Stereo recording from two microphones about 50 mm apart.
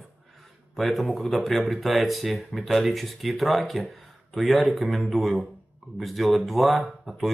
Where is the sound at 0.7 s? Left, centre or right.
Centre.